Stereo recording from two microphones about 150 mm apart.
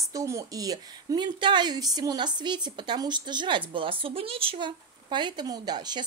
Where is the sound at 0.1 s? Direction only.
20° right (ahead or behind).